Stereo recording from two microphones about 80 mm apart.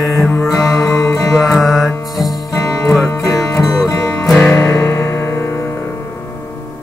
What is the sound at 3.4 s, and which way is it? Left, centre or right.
Music, left.